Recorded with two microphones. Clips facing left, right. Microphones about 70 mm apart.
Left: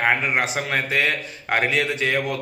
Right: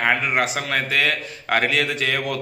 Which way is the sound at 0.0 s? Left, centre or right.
Left.